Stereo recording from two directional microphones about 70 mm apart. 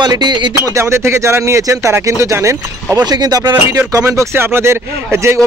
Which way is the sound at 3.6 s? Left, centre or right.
Right.